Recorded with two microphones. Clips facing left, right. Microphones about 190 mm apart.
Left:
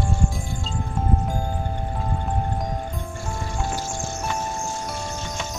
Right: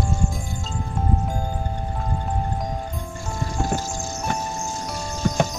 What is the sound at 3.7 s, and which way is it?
Music, 40° right (ahead or behind).